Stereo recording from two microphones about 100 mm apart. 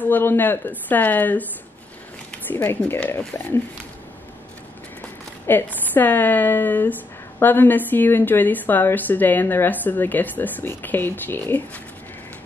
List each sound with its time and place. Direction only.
0.0 s a woman's voice: 20° left (ahead or behind)
5.5 s a woman's voice: 20° left (ahead or behind)